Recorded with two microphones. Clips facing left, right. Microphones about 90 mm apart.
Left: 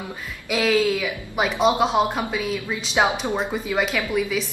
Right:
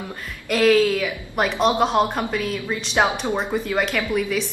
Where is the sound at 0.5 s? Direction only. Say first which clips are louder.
Right 3 dB; 5° left (ahead or behind).